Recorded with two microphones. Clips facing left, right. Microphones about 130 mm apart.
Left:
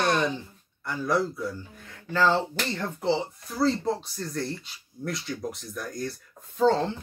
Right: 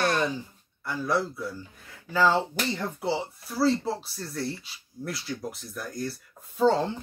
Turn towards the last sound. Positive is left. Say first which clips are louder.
# even
turn(degrees=-10)  # may be behind; listen again after turning